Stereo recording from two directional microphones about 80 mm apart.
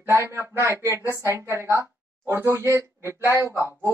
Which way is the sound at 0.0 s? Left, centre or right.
Right.